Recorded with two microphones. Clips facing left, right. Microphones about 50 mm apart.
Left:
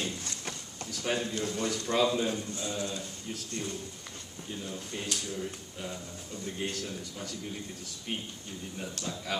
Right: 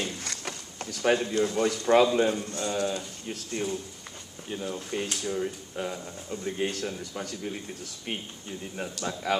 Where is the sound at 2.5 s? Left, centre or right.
Right.